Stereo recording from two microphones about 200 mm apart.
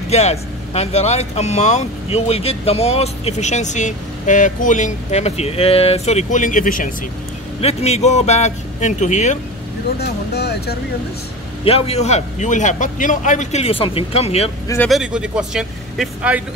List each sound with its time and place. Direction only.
0.1 s speech: 30° left (ahead or behind)
9.9 s speech: 55° left (ahead or behind)
11.6 s speech: 30° left (ahead or behind)
14.9 s speech: 5° right (ahead or behind)